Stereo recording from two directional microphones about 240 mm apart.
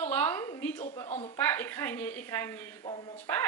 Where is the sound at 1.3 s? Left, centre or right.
Centre.